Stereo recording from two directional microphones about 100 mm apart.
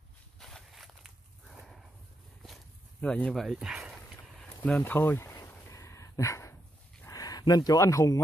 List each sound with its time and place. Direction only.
0.4 s walk: 5° left (ahead or behind)
3.0 s speech: 10° left (ahead or behind)
3.4 s speech: 5° right (ahead or behind)
4.4 s a sound: 10° left (ahead or behind); by 5.5 s 25° left (ahead or behind)
5.7 s dog: 30° left (ahead or behind)
7.1 s speech: 40° left (ahead or behind)